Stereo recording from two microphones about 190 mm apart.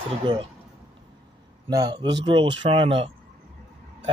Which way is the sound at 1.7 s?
20° right (ahead or behind).